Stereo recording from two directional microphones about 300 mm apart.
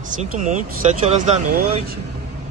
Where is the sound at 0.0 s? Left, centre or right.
Right.